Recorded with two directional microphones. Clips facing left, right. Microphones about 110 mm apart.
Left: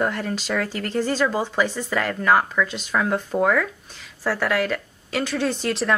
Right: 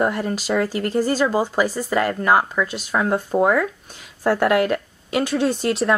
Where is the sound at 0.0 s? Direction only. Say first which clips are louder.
Right 3 dB; 10° right (ahead or behind).